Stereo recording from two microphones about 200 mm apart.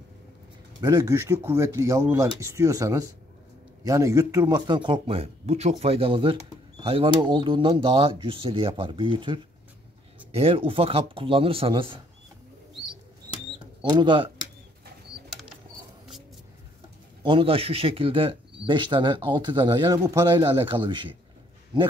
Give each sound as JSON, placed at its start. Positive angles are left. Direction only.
{"t": 0.7, "sound": "speech", "side_deg": -15}
{"t": 13.3, "sound": "a sound", "side_deg": -15}
{"t": 13.8, "sound": "speech", "side_deg": -20}
{"t": 17.2, "sound": "speech", "side_deg": -25}